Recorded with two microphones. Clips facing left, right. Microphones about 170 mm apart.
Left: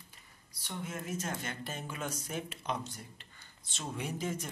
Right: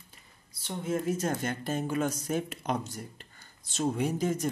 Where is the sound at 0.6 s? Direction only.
30° right (ahead or behind).